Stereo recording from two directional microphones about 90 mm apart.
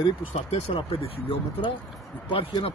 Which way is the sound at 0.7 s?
90° left.